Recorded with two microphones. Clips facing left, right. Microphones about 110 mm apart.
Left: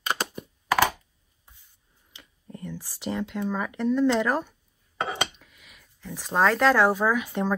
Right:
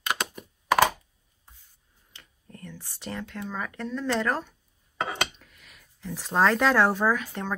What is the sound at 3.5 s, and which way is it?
Speech, 10° left (ahead or behind).